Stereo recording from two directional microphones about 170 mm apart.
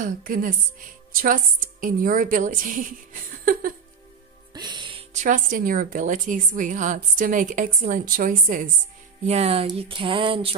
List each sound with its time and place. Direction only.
0.0 s a woman's voice: 55° right (ahead or behind)
4.6 s music: 25° right (ahead or behind)
5.1 s a woman's voice: 50° right (ahead or behind)
9.2 s a sound: 40° right (ahead or behind)